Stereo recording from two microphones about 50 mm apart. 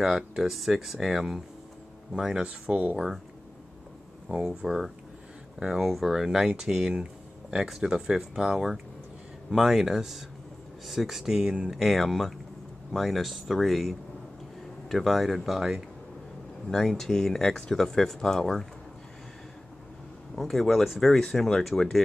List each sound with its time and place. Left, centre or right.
0.0 s speech: centre
2.4 s speech: right
4.3 s speech: centre
4.6 s speech: centre
16.6 s speech: centre
20.3 s speech: centre